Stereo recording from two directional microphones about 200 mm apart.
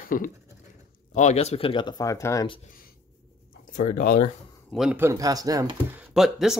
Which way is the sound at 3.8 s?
45° left (ahead or behind).